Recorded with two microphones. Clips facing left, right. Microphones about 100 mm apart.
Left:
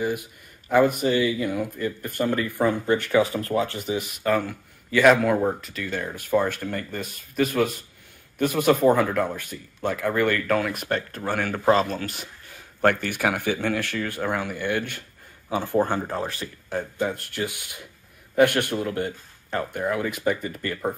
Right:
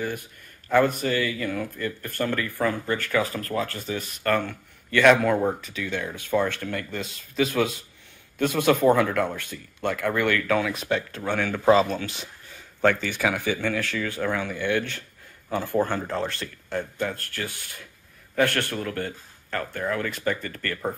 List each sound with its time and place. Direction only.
0.0 s speech: 10° left (ahead or behind)
13.3 s speech: 15° left (ahead or behind)